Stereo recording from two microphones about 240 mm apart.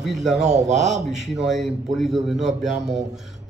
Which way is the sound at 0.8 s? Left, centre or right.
Centre.